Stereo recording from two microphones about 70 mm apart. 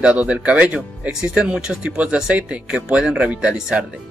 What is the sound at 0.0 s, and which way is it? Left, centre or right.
Speech, centre.